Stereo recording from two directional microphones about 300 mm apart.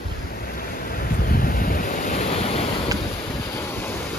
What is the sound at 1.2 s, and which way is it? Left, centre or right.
Waves, left.